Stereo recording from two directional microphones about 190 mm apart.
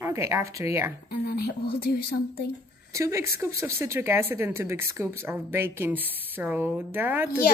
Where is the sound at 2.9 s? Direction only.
15° right (ahead or behind).